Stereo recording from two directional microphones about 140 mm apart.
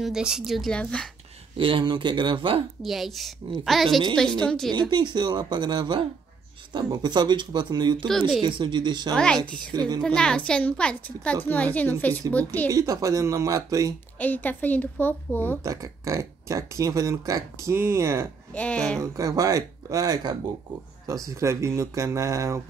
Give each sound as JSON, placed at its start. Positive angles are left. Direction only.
{"t": 0.0, "sound": "speech", "side_deg": -5}
{"t": 1.6, "sound": "speech", "side_deg": -35}
{"t": 2.8, "sound": "speech", "side_deg": 0}
{"t": 4.7, "sound": "speech", "side_deg": -35}
{"t": 9.1, "sound": "speech", "side_deg": 5}
{"t": 9.4, "sound": "speech", "side_deg": -30}
{"t": 10.0, "sound": "a woman's voice", "side_deg": 5}
{"t": 12.6, "sound": "speech", "side_deg": -25}
{"t": 14.2, "sound": "a woman's voice", "side_deg": 10}
{"t": 15.6, "sound": "speech", "side_deg": -25}
{"t": 18.5, "sound": "a woman's voice", "side_deg": 10}
{"t": 18.9, "sound": "speech", "side_deg": -25}